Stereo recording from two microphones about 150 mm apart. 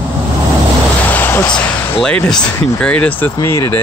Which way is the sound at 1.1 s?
15° left (ahead or behind).